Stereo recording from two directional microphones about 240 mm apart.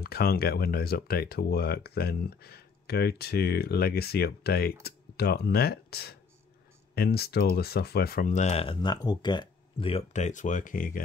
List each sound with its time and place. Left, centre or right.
0.0 s speech: left